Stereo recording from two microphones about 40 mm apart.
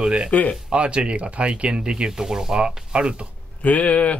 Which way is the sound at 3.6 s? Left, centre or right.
Left.